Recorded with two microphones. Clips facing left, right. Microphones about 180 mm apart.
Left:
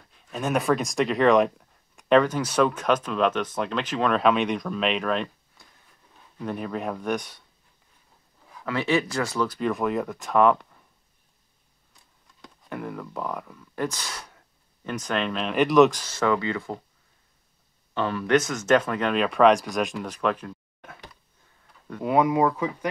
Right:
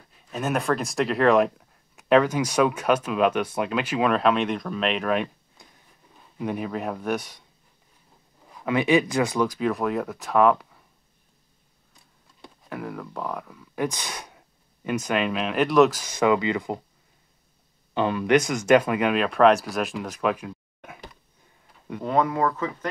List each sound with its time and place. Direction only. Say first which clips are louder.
0.1 s speech: left 1 dB; 5° right (ahead or behind)
5.6 s a sound: right 4 dB; 20° right (ahead or behind)
6.3 s speech: right 2 dB; 10° right (ahead or behind)
8.5 s speech: right 4 dB; 15° right (ahead or behind)
9.6 s speech: even; centre (ahead or behind)
12.6 s speech: even; centre (ahead or behind)
13.7 s speech: right 2 dB; 15° right (ahead or behind); by 16.0 s centre (ahead or behind)
16.0 s speech: right 3 dB; 15° right (ahead or behind)
17.9 s speech: right 2 dB; 15° right (ahead or behind)
22.0 s speech: left 2 dB; 10° left (ahead or behind)